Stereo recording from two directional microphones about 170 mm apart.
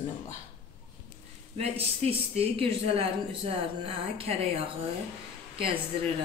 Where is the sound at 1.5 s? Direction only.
35° right (ahead or behind).